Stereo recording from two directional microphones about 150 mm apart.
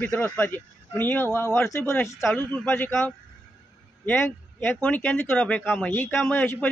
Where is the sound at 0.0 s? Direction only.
10° left (ahead or behind).